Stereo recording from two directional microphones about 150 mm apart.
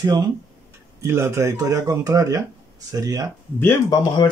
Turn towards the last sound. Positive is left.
turn(degrees=30)  # may be behind; listen again after turning